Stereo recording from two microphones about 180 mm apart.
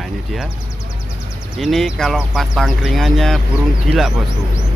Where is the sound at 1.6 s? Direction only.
Centre (ahead or behind).